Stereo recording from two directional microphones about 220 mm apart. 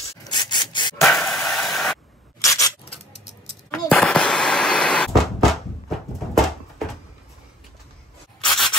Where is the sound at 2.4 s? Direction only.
15° left (ahead or behind).